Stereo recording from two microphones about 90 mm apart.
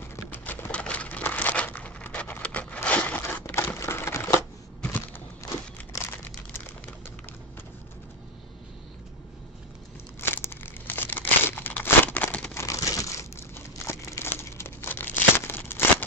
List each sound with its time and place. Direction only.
0.1 s crumpling: 25° left (ahead or behind)
4.8 s a sound: 20° left (ahead or behind)
5.8 s crumpling: 25° left (ahead or behind)
10.2 s crumpling: 25° left (ahead or behind)
12.5 s crumpling: 35° left (ahead or behind)